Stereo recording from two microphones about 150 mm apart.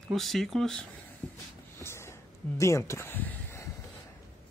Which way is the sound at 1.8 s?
15° left (ahead or behind).